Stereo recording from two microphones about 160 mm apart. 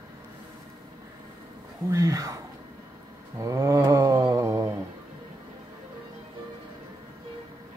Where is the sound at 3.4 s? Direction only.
20° right (ahead or behind).